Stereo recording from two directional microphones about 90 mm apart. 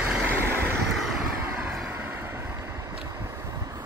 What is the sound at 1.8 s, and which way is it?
Vehicle, 20° right (ahead or behind).